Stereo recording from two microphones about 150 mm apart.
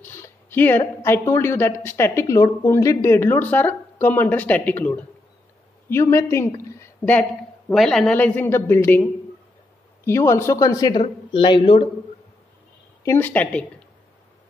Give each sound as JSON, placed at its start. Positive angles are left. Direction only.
{"t": 0.0, "sound": "speech", "side_deg": 15}
{"t": 7.7, "sound": "speech", "side_deg": 0}
{"t": 13.0, "sound": "speech", "side_deg": 15}